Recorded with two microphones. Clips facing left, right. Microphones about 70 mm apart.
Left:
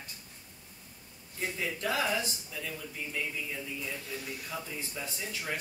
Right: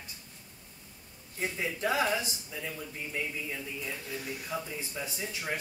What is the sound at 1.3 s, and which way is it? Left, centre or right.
Speech, right.